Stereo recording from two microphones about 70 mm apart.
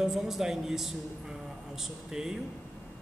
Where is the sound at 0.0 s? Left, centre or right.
Centre.